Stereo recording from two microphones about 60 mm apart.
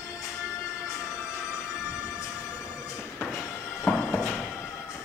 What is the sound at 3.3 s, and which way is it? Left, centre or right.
Music, left.